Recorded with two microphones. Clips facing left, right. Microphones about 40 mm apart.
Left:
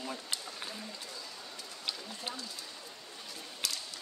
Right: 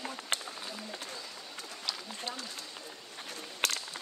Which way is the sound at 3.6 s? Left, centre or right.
Right.